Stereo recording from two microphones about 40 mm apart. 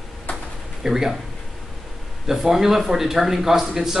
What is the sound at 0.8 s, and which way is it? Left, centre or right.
Speech, centre.